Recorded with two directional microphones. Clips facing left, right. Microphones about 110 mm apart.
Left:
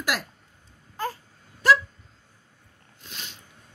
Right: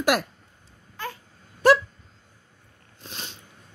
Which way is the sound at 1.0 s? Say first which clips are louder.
Left 4 dB; 40° left (ahead or behind).